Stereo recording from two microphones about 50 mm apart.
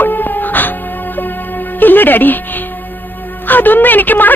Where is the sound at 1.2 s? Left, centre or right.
Left.